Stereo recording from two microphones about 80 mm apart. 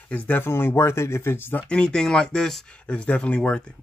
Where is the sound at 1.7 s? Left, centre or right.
Centre.